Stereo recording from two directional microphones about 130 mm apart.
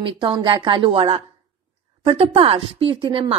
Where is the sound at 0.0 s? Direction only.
35° right (ahead or behind).